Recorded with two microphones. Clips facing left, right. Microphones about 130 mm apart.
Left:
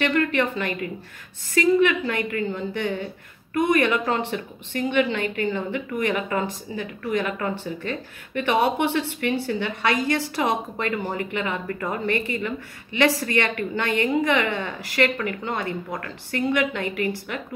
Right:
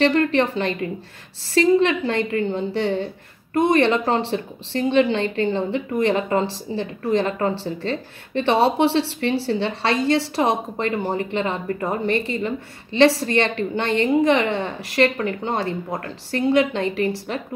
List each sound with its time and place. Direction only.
0.0 s a woman's voice: 30° right (ahead or behind)